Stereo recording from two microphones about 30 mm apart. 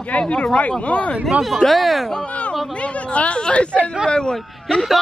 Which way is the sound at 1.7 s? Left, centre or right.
Centre.